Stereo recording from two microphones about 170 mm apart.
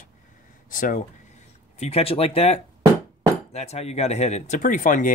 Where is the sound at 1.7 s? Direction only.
35° left (ahead or behind).